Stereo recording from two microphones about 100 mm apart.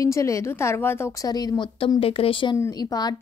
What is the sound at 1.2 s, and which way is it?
Speech, 40° left (ahead or behind).